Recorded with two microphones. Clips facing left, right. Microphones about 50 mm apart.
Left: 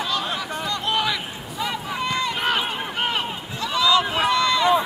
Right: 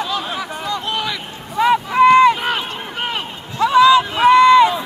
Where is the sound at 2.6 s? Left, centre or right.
Centre.